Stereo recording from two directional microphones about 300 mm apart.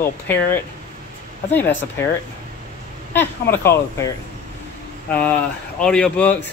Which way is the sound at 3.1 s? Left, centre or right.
Centre.